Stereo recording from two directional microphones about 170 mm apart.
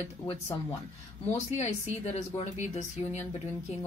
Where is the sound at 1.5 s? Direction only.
40° left (ahead or behind).